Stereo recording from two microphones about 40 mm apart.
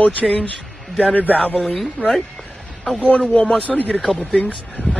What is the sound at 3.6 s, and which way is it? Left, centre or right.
Speech, left.